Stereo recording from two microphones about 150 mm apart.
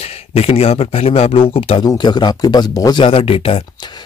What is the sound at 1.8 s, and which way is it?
Speech, 30° left (ahead or behind).